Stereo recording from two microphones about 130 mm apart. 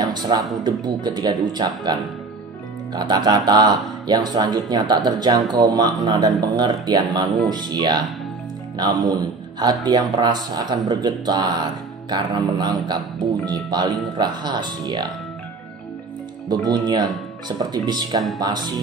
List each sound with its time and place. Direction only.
0.0 s a sound: 35° right (ahead or behind)
0.7 s a man's voice: 35° right (ahead or behind)
16.4 s a man's voice: 30° right (ahead or behind)